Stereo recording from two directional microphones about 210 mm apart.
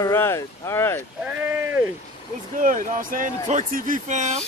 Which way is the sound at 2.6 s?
40° right (ahead or behind).